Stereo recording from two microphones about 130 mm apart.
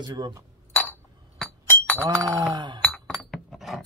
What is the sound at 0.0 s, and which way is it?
Chink, 30° right (ahead or behind).